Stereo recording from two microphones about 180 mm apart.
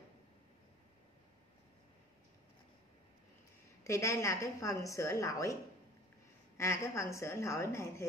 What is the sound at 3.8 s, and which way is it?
A woman's voice, 15° left (ahead or behind).